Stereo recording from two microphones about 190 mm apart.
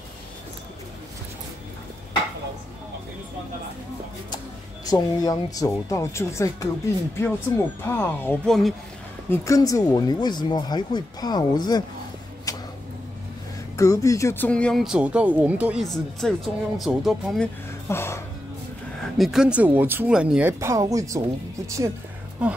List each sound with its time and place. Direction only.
4.8 s speech: 20° left (ahead or behind); by 8.7 s centre (ahead or behind)
9.3 s speech: 15° left (ahead or behind)
12.5 s a sound: 20° left (ahead or behind)
13.7 s speech: 15° left (ahead or behind); by 17.5 s centre (ahead or behind)
17.8 s speech: 15° left (ahead or behind)
19.1 s speech: centre (ahead or behind); by 21.9 s 15° right (ahead or behind)